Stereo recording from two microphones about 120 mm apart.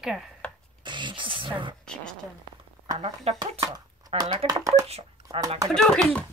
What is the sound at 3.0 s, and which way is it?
Speech, 60° right (ahead or behind).